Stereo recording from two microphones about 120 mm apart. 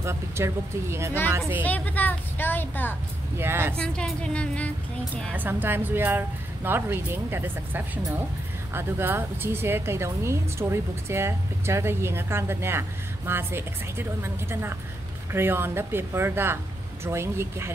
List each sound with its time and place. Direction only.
0.0 s speech: 20° right (ahead or behind)
1.6 s a woman's voice: 15° left (ahead or behind)
3.3 s speech: 20° right (ahead or behind)
3.7 s a woman's voice: 5° left (ahead or behind)
5.3 s a woman's voice: 15° right (ahead or behind)